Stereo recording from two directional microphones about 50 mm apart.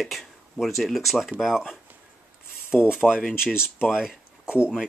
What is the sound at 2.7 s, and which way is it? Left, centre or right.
Speech, centre.